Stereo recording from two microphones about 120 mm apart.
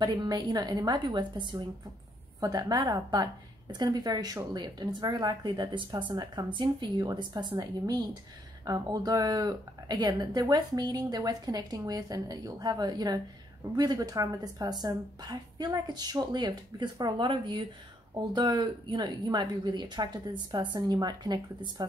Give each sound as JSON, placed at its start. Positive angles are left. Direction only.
{"t": 0.0, "sound": "speech", "side_deg": -35}